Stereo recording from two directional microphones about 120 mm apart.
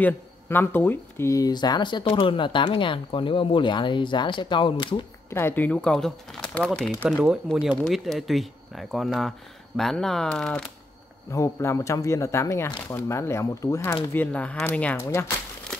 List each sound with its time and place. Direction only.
0.0 s speech: 15° left (ahead or behind); by 5.0 s 40° left (ahead or behind)
5.3 s speech: 20° left (ahead or behind)
11.3 s speech: 25° left (ahead or behind)
14.1 s speech: 15° left (ahead or behind)